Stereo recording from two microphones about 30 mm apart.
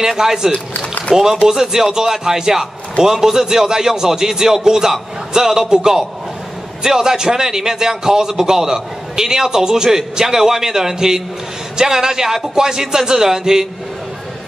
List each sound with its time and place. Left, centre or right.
0.0 s a man's voice: centre